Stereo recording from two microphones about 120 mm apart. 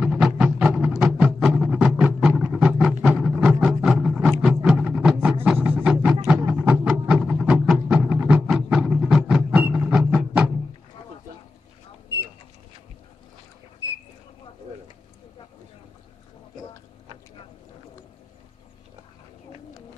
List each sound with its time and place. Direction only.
0.0 s music: 5° right (ahead or behind)
4.6 s a sound: 5° right (ahead or behind)
5.6 s music: 15° right (ahead or behind)